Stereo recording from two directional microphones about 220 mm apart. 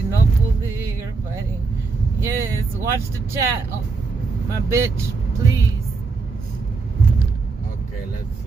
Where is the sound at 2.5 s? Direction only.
15° right (ahead or behind).